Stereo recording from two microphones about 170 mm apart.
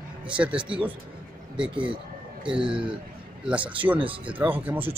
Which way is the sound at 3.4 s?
10° right (ahead or behind).